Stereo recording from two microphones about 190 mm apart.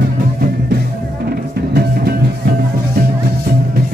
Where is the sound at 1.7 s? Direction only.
55° right (ahead or behind).